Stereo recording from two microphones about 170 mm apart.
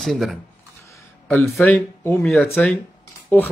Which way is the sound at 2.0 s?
15° left (ahead or behind).